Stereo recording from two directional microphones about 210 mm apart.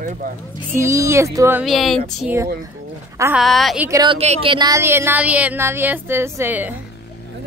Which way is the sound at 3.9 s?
20° right (ahead or behind).